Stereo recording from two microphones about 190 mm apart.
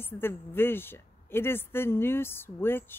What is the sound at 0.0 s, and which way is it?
Speech, 10° left (ahead or behind).